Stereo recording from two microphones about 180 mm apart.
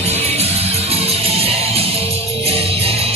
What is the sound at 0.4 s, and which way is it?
Music, 35° right (ahead or behind).